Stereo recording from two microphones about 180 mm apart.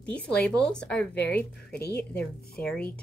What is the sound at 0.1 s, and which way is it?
Speech, 5° left (ahead or behind).